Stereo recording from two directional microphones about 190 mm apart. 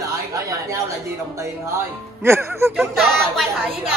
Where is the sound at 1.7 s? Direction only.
15° right (ahead or behind).